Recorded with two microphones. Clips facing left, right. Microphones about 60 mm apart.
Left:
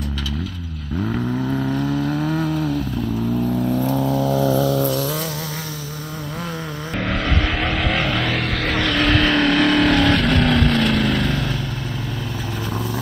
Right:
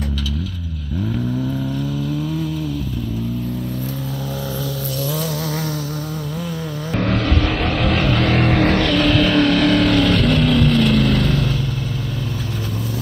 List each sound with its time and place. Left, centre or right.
1.1 s vehicle: left
7.6 s vehicle: centre
8.4 s vehicle: centre
9.0 s vehicle: left